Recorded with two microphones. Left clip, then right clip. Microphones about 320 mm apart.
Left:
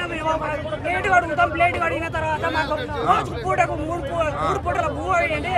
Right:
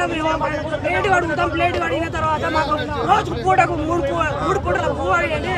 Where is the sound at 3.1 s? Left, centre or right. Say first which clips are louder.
Right 4 dB; centre.